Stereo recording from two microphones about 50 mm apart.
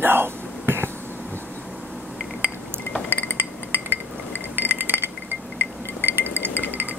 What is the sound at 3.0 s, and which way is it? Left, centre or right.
Chink, left.